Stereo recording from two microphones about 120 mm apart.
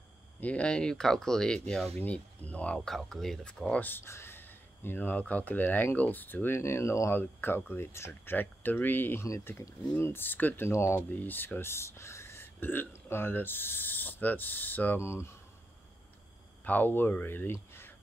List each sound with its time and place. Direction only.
0.4 s speech: 10° left (ahead or behind)
16.6 s speech: 15° left (ahead or behind)